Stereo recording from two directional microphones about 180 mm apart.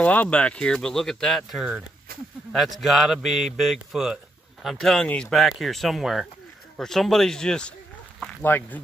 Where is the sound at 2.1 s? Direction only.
55° right (ahead or behind).